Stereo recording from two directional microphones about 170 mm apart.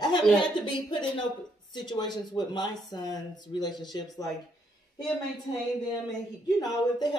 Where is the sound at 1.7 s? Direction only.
25° left (ahead or behind).